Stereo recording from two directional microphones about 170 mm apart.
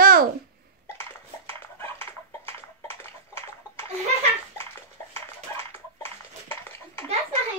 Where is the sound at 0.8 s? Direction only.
15° left (ahead or behind).